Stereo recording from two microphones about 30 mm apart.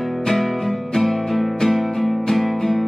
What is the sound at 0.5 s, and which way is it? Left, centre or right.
Music, centre.